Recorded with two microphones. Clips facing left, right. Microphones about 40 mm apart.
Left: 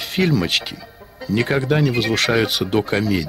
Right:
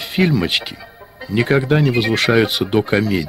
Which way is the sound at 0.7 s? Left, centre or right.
Centre.